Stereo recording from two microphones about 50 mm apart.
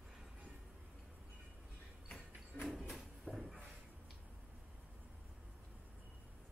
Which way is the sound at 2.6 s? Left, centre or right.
Centre.